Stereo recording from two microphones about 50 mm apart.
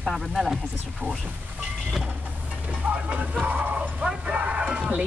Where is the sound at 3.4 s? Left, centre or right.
Right.